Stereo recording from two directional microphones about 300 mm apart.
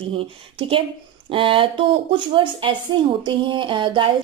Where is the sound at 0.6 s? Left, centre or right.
Centre.